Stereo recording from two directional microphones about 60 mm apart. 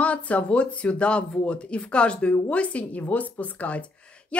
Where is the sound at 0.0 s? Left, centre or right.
Left.